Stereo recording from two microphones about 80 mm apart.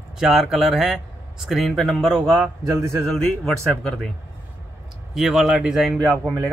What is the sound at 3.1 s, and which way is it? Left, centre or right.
Speech, centre.